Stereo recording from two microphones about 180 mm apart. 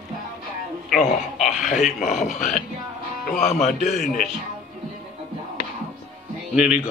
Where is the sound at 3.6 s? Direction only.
40° left (ahead or behind).